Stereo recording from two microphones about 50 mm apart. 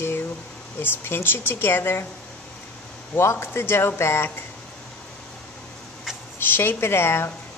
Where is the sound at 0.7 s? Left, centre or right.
Left.